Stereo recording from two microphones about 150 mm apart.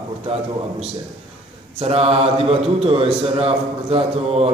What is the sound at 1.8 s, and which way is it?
A man's voice, 40° right (ahead or behind).